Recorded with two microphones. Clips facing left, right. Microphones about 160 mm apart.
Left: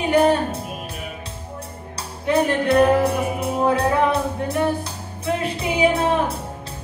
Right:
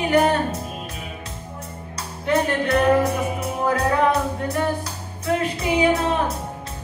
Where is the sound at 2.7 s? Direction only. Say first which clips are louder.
Left 2 dB; 30° left (ahead or behind).